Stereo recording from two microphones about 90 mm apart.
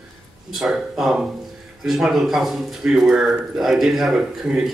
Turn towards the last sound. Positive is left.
turn(degrees=-5)  # may be behind; listen again after turning